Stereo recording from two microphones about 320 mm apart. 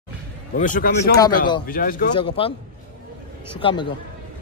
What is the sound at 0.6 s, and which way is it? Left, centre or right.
A man's voice, left.